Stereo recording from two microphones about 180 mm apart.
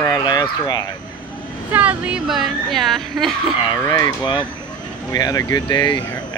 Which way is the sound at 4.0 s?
25° left (ahead or behind).